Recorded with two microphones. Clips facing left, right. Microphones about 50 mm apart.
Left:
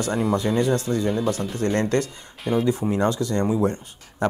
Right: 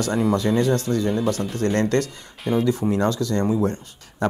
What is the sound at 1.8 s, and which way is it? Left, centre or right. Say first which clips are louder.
Speech: right 1 dB; centre.